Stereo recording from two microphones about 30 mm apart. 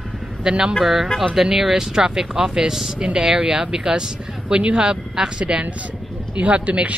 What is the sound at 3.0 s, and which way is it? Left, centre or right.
Speech, right.